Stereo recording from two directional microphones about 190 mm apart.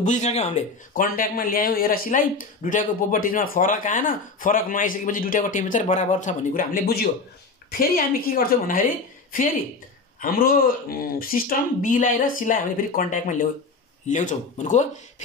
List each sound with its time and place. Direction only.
0.0 s speech: 40° left (ahead or behind)